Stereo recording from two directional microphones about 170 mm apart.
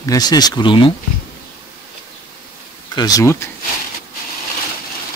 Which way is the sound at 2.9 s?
25° left (ahead or behind).